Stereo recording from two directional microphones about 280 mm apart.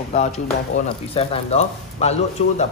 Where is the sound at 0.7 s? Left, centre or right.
Left.